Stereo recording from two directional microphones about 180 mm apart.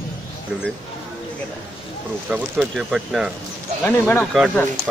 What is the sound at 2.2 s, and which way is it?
Speech, 5° right (ahead or behind).